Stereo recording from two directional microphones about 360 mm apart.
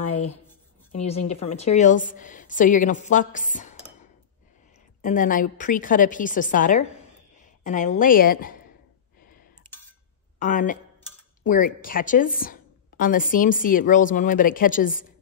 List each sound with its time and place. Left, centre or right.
0.9 s a woman's voice: centre
5.0 s a woman's voice: left
9.2 s clicking: left
10.4 s a woman's voice: left